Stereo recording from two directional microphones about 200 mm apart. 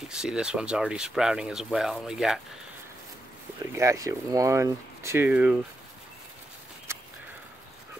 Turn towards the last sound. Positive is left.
turn(degrees=-10)  # may be behind; listen again after turning